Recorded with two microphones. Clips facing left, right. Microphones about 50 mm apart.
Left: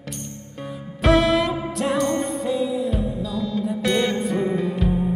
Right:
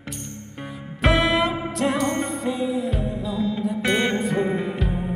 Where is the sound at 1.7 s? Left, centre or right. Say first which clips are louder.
Left 1 dB; centre.